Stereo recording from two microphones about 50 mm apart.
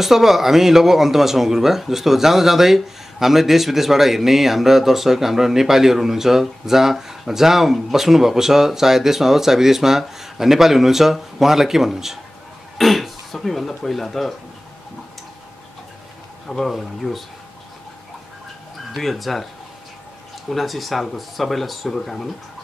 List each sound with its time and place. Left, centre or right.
0.0 s speech: centre
16.4 s speech: centre
18.9 s speech: centre
20.4 s speech: centre